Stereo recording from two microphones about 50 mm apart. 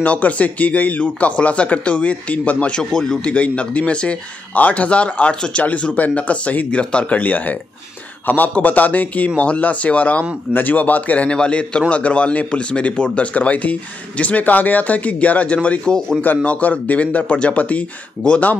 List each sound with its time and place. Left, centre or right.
0.0 s a man's voice: left
2.8 s a man's voice: centre
3.3 s a man's voice: left
10.5 s a man's voice: left; by 16.2 s centre
16.4 s a man's voice: left